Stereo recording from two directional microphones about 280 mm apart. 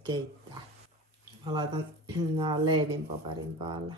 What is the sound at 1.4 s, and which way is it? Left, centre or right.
Speech, centre.